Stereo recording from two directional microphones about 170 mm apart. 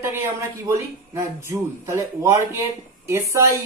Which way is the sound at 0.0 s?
15° right (ahead or behind).